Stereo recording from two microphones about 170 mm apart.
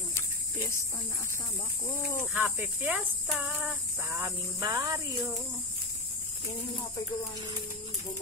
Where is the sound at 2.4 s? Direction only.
10° right (ahead or behind).